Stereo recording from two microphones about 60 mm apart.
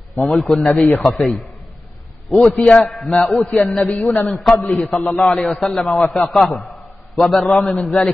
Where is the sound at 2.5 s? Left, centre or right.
Centre.